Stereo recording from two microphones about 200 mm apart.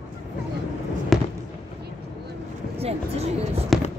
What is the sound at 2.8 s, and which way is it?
Basketball bounce, 30° right (ahead or behind).